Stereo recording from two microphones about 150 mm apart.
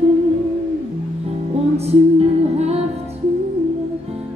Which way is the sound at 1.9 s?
45° right (ahead or behind).